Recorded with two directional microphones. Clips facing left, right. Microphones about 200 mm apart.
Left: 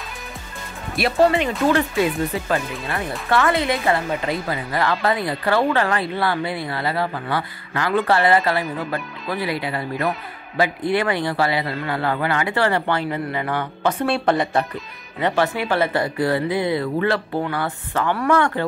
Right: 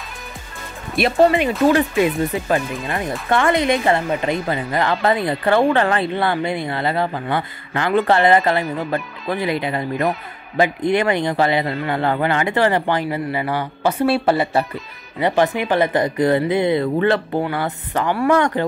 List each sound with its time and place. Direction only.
0.9 s speech: 20° right (ahead or behind)
15.1 s speech: 15° right (ahead or behind)